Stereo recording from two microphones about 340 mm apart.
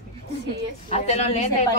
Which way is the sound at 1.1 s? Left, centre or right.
Centre.